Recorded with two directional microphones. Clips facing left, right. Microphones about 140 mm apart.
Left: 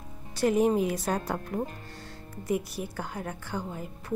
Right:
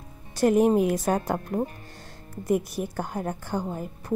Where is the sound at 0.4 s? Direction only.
50° right (ahead or behind).